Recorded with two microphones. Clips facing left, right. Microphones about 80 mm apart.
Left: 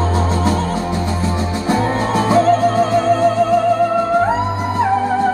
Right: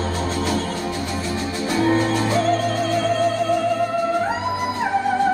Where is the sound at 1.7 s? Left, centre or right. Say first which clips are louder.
Left 1 dB; left.